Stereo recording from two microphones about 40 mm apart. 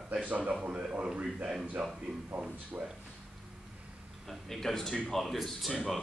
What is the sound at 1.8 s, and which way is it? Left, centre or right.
Speech, centre.